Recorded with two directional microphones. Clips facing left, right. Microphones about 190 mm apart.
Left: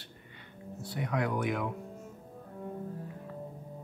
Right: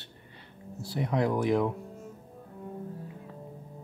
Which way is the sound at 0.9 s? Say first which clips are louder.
Right 5 dB; 30° right (ahead or behind).